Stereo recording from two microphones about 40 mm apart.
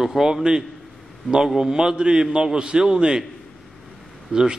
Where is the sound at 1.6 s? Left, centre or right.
Centre.